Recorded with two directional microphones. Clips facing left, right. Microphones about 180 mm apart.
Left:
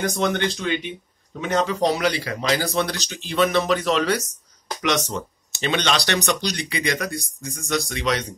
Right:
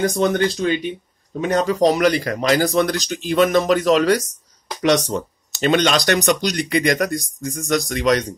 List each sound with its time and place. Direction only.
0.1 s a man's voice: 40° right (ahead or behind)